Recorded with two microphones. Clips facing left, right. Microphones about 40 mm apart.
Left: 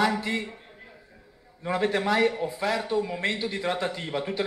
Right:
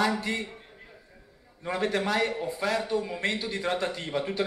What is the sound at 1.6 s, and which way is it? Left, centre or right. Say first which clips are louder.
A man's voice: left 2 dB; centre.